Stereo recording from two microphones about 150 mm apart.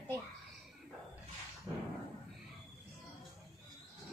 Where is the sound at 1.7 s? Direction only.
30° right (ahead or behind).